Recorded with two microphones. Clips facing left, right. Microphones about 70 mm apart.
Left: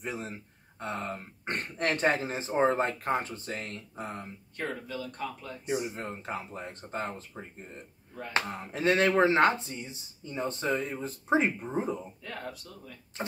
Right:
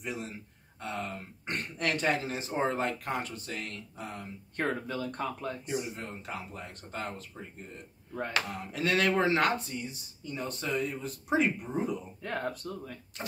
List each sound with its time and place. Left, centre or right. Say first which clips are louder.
0.0 s speech: left 1 dB; left
4.6 s speech: right 3 dB; right
5.7 s speech: left 7 dB; left
8.3 s speech: left 4 dB; left
12.2 s speech: right 5 dB; right